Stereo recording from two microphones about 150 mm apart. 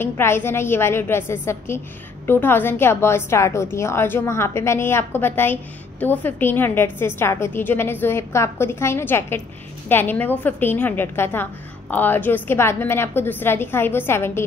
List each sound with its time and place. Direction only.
0.0 s a woman's voice: 15° left (ahead or behind)